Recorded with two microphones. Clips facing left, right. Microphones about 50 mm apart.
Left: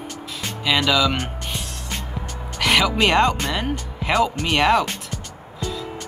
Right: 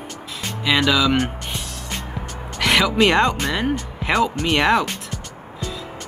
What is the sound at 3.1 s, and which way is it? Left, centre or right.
Speech, right.